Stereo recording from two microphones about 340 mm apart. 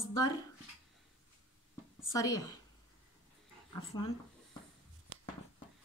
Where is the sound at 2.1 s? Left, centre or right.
Centre.